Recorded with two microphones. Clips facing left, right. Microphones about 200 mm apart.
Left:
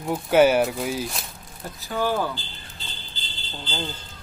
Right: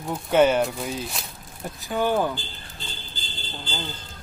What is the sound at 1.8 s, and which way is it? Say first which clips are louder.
Speech: right 2 dB; 15° right (ahead or behind).